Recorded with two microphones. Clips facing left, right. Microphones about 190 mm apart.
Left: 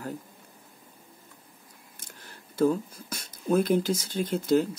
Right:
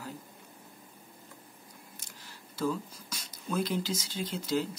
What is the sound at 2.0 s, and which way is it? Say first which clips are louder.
Speech: left 2 dB; 55° left (ahead or behind).